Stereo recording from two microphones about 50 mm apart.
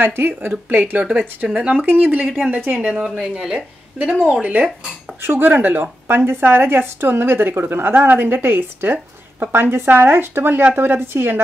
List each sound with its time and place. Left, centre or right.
0.0 s a woman's voice: right
2.2 s speech: centre
2.6 s a woman's voice: right
10.8 s a woman's voice: right